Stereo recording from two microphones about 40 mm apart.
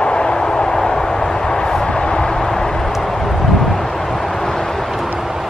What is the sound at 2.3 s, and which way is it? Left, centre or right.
Vehicle, centre.